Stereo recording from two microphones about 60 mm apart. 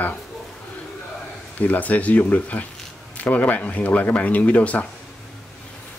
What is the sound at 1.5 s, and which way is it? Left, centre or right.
A man's voice, left.